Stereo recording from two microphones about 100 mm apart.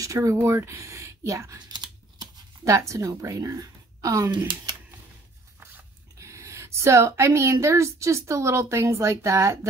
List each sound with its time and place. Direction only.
0.0 s speech: 35° right (ahead or behind)
1.7 s computer keyboard: 45° right (ahead or behind)
2.6 s a woman's voice: 30° right (ahead or behind)
6.1 s a woman's voice: 30° right (ahead or behind)